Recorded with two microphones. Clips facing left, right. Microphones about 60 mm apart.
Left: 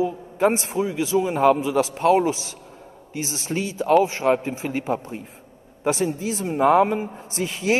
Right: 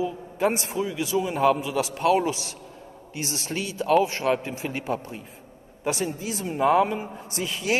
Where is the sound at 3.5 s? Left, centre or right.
Left.